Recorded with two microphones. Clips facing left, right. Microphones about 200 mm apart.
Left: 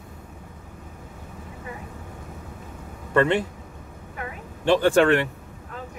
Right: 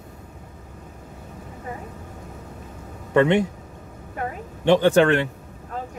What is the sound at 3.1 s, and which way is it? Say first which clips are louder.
Speech: right 3 dB; 15° right (ahead or behind).